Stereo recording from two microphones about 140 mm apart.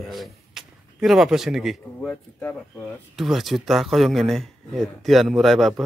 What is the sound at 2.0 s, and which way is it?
Speech, 10° left (ahead or behind).